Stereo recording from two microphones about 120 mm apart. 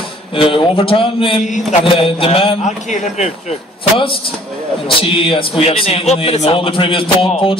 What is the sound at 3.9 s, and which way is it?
A man's voice, 50° left (ahead or behind).